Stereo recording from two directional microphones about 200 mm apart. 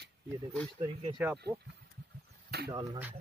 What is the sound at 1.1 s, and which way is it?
Speech, 5° right (ahead or behind).